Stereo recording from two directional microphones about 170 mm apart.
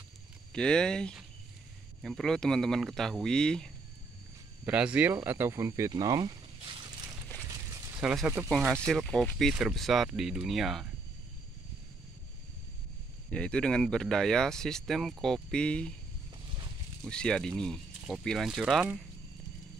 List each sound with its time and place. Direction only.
0.5 s speech: 5° left (ahead or behind)
4.6 s speech: 5° right (ahead or behind); by 6.8 s 25° right (ahead or behind)
7.7 s a sound: 20° right (ahead or behind)
8.0 s speech: 5° right (ahead or behind)
13.3 s speech: 5° left (ahead or behind)
17.0 s speech: 5° left (ahead or behind)